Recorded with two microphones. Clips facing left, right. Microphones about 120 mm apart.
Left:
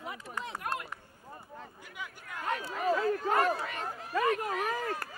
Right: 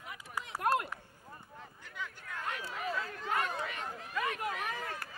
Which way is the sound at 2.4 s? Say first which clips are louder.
Left 8 dB; 40° left (ahead or behind).